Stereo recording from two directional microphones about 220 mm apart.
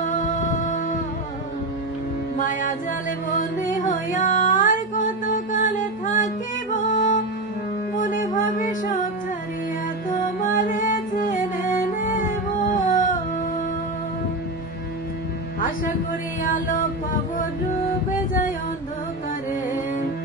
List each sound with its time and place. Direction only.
0.0 s music: 35° left (ahead or behind)
3.3 s music: 35° left (ahead or behind)
10.4 s music: 35° left (ahead or behind)
16.4 s music: 40° left (ahead or behind)